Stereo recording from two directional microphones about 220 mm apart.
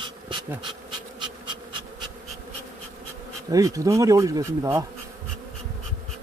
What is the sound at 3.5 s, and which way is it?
Speech, 15° right (ahead or behind).